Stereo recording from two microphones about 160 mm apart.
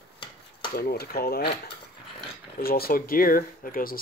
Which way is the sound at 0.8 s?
75° left (ahead or behind).